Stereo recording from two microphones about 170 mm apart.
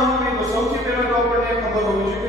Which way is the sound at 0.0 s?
Centre (ahead or behind).